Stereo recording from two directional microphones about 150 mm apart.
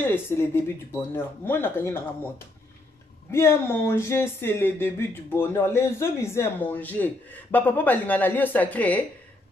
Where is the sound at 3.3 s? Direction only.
15° left (ahead or behind).